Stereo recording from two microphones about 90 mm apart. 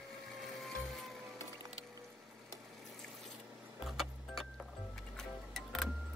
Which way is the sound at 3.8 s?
5° right (ahead or behind).